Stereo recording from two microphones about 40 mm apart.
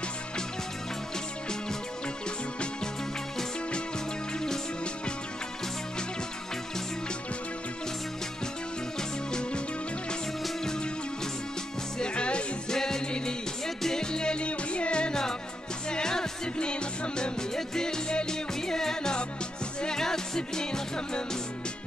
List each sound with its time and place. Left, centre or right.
9.3 s music: left
10.6 s music: centre
12.0 s music: left
12.7 s music: centre